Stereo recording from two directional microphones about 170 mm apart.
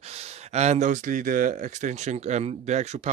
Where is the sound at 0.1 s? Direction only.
40° right (ahead or behind).